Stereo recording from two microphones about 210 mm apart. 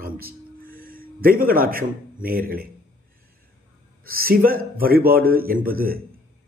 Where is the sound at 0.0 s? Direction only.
45° right (ahead or behind).